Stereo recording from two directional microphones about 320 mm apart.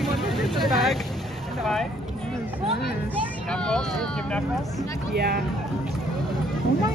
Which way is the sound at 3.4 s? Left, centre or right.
Centre.